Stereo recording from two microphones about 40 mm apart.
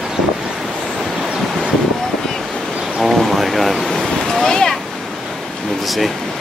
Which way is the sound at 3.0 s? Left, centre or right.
Centre.